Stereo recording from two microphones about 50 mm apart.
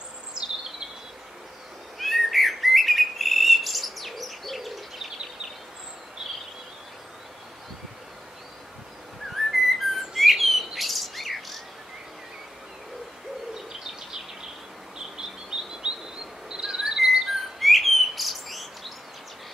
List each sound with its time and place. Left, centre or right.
0.3 s bird vocalization: centre
2.0 s bird: centre
9.4 s bird: centre
15.0 s chirp: centre
16.4 s bird: centre
17.6 s bird: centre